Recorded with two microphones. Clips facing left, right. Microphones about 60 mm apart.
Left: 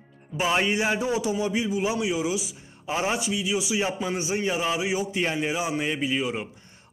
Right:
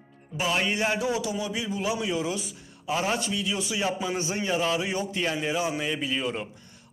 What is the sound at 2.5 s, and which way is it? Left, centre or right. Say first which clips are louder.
Speech: even; left.